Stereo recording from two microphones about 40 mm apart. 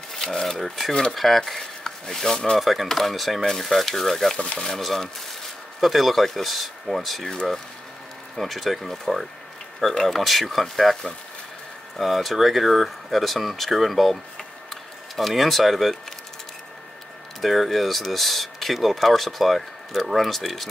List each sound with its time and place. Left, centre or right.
0.1 s speech: centre
2.6 s speech: centre
4.4 s speech: centre
4.7 s speech: centre
8.4 s speech: centre
12.0 s speech: centre
17.4 s speech: centre